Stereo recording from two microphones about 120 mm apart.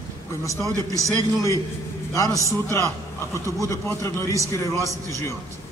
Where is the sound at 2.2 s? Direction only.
25° right (ahead or behind).